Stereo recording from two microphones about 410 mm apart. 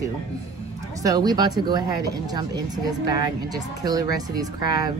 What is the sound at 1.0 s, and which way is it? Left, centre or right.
Speech, centre.